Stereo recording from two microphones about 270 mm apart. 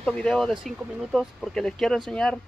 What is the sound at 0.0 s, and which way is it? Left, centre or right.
Speech, centre.